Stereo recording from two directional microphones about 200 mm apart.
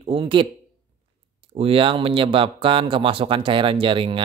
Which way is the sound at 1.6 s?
25° right (ahead or behind).